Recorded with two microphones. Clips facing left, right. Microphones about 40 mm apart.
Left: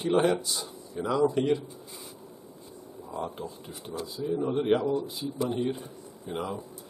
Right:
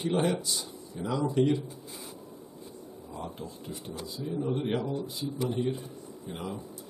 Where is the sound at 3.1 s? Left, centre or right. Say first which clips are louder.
Left 5 dB; centre.